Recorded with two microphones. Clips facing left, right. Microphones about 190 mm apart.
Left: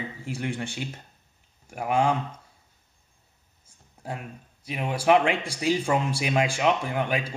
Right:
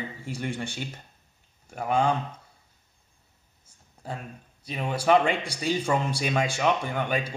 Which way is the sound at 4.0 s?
10° left (ahead or behind).